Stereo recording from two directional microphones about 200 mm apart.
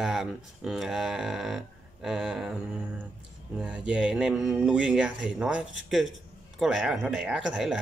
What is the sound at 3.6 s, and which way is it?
Speech, 5° right (ahead or behind).